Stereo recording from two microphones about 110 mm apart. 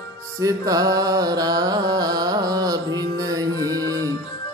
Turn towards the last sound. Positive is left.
turn(degrees=-35)  # may be behind; listen again after turning